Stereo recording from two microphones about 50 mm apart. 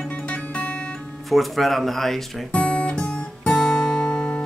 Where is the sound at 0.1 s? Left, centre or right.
Left.